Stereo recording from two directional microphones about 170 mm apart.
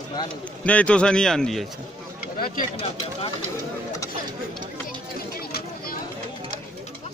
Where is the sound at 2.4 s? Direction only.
55° left (ahead or behind).